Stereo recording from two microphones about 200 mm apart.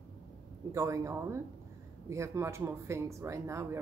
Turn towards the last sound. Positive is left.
turn(degrees=-15)  # may be behind; listen again after turning